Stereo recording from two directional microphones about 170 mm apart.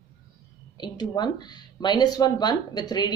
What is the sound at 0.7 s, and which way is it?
Speech, 25° left (ahead or behind).